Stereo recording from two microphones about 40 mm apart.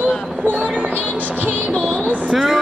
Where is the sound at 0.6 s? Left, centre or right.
Right.